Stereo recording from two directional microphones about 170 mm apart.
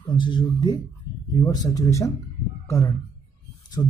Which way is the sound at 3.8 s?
30° left (ahead or behind).